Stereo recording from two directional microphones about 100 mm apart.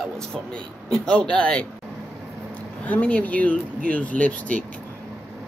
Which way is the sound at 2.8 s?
15° left (ahead or behind).